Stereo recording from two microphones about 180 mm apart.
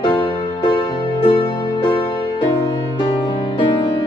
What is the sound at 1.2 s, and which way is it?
Music, 30° left (ahead or behind).